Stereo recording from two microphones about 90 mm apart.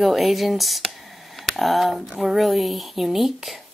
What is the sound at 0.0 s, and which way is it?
Speech, centre (ahead or behind).